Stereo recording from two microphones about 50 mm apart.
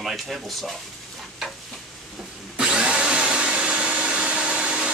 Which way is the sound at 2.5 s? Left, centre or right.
Centre.